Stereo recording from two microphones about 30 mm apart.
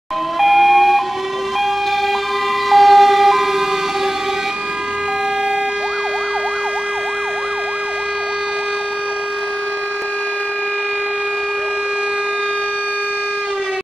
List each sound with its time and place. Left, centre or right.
0.4 s emergency vehicle: centre
2.7 s emergency vehicle: centre